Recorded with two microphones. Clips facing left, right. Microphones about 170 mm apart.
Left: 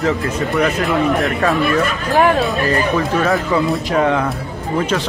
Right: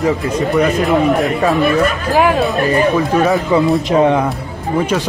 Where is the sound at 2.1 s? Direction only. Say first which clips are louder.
Even; 5° right (ahead or behind).